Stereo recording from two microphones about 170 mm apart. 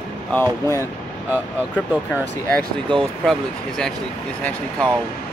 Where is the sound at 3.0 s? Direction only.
5° left (ahead or behind).